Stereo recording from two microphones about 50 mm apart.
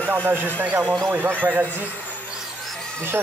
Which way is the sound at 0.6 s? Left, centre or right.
Right.